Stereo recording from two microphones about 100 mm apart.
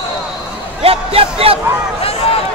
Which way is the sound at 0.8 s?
75° right (ahead or behind).